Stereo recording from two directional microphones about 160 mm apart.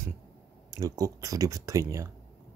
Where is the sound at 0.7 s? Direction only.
20° right (ahead or behind).